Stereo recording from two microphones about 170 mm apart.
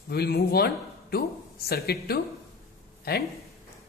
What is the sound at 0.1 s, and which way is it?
Speech, 65° left (ahead or behind).